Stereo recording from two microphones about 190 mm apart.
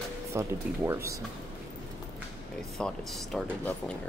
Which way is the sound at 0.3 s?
15° right (ahead or behind).